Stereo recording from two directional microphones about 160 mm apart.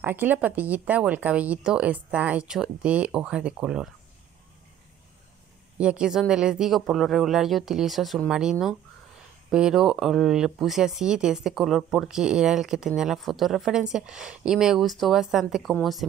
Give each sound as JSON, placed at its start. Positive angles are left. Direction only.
{"t": 0.0, "sound": "speech", "side_deg": -10}
{"t": 5.8, "sound": "speech", "side_deg": -5}